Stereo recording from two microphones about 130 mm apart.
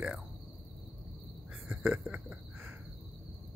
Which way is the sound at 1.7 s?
5° right (ahead or behind).